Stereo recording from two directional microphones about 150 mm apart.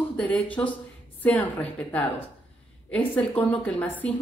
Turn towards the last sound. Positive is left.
turn(degrees=10)  # may be behind; listen again after turning